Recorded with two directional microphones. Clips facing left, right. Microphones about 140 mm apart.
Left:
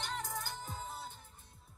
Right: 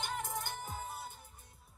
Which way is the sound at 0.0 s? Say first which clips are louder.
Right 2 dB; 15° right (ahead or behind).